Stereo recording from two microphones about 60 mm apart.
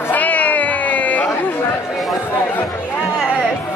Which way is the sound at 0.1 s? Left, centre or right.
Left.